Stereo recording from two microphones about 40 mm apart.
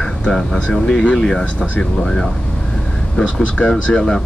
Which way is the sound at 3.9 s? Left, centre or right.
Centre.